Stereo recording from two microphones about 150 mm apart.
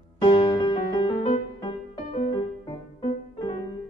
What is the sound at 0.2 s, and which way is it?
Music, 35° left (ahead or behind).